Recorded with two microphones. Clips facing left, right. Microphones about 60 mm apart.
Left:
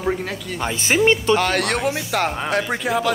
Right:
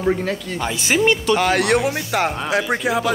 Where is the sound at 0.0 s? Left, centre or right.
Centre.